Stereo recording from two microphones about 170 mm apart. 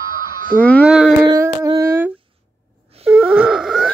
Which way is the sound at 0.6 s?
10° left (ahead or behind).